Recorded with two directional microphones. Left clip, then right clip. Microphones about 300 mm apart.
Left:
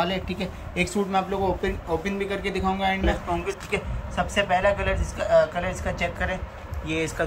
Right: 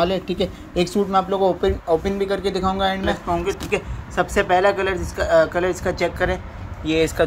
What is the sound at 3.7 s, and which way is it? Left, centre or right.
Speech, right.